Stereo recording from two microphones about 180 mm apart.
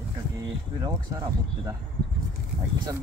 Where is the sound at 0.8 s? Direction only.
20° right (ahead or behind).